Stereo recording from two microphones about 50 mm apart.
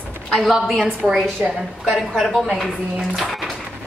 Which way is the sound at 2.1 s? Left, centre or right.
Centre.